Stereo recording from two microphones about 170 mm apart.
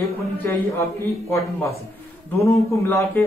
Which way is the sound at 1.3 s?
15° left (ahead or behind).